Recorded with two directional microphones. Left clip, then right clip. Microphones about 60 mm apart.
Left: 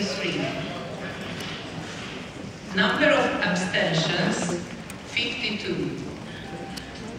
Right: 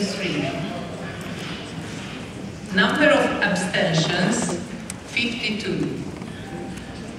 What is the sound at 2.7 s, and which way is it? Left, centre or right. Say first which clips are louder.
Speech: right 3 dB; right.